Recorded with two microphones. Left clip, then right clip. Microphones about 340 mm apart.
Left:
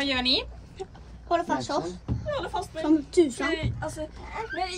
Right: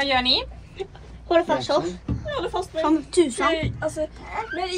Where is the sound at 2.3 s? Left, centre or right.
Centre.